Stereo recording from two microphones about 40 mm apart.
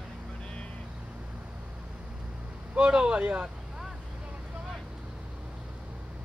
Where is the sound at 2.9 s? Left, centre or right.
Right.